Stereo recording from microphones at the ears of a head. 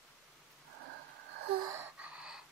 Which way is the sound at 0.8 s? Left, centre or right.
Right.